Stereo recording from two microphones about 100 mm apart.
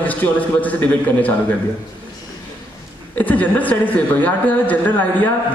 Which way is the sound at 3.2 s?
15° left (ahead or behind).